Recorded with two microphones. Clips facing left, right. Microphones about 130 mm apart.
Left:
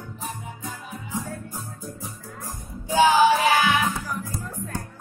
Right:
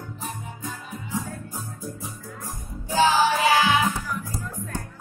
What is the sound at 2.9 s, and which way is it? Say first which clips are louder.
Music: left 2 dB; 15° left (ahead or behind).